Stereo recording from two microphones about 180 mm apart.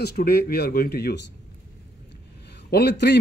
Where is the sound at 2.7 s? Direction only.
65° left (ahead or behind).